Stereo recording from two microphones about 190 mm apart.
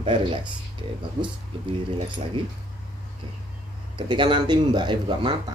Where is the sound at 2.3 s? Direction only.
25° right (ahead or behind).